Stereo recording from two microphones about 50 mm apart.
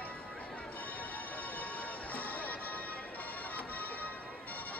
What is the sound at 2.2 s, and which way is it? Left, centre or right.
Music, left.